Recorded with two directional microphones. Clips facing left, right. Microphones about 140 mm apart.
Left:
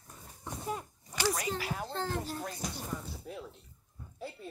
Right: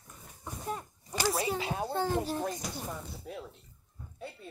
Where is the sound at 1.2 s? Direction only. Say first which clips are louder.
Right 2 dB; 25° right (ahead or behind).